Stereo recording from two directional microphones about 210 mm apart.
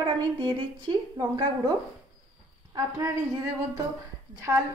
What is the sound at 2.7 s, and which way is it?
Speech, 15° right (ahead or behind).